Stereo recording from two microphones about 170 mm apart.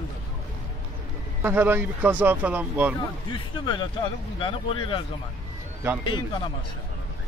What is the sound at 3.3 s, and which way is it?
Speech, 30° left (ahead or behind).